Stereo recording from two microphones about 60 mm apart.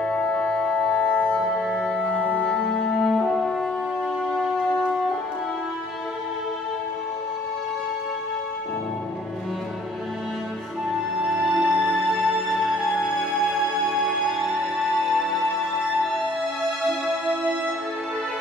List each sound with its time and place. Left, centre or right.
0.0 s music: centre
1.5 s music: centre
2.4 s music: centre
11.4 s music: centre